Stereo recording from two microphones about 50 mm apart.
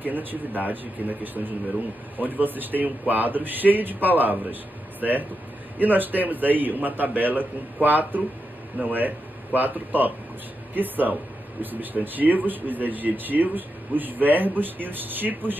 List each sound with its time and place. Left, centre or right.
0.0 s speech: right
5.8 s a man's voice: right